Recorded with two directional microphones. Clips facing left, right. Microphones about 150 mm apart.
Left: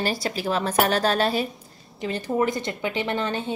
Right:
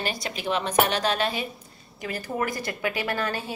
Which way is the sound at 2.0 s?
25° left (ahead or behind).